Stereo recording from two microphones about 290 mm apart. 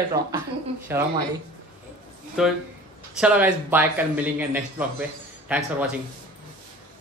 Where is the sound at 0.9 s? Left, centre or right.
Centre.